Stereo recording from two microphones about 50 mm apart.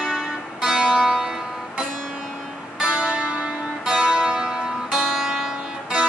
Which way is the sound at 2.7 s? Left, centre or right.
Centre.